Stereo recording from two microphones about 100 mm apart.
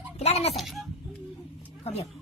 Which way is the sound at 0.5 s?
Centre (ahead or behind).